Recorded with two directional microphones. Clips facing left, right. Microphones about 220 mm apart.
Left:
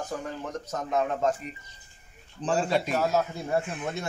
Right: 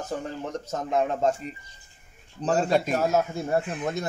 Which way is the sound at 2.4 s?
40° right (ahead or behind).